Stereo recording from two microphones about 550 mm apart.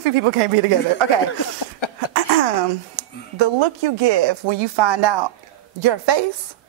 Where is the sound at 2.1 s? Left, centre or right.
Right.